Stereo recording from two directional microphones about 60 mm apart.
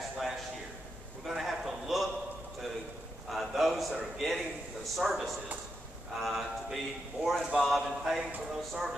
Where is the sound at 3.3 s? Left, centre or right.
Centre.